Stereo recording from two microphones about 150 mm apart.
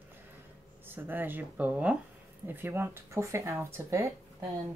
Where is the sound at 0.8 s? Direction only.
10° right (ahead or behind).